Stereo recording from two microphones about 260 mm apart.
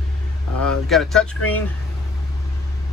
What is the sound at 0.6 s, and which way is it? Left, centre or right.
Speech, centre.